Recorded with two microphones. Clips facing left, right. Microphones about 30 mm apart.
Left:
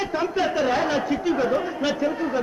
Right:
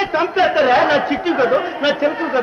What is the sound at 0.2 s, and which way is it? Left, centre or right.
Speech, right.